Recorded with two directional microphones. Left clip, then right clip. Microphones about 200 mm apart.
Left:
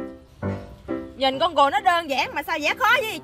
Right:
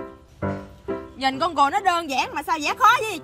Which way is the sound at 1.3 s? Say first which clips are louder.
Left 1 dB; centre (ahead or behind).